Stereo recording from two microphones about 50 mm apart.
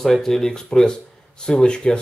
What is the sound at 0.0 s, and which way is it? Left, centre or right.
Speech, centre.